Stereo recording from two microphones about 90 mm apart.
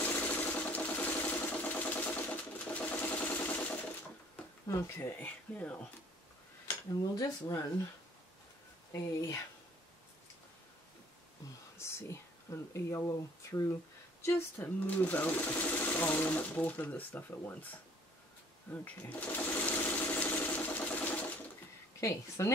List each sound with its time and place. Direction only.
0.0 s a sound: 20° left (ahead or behind)
4.6 s speech: 30° left (ahead or behind)
6.9 s speech: 40° left (ahead or behind)
11.8 s speech: 30° left (ahead or behind)
14.2 s speech: 20° left (ahead or behind)
18.7 s sewing machine: 20° left (ahead or behind)
22.0 s speech: 30° left (ahead or behind)